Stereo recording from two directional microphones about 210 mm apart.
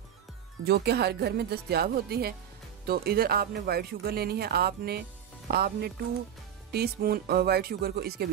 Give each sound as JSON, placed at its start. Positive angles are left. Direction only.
{"t": 0.7, "sound": "speech", "side_deg": -50}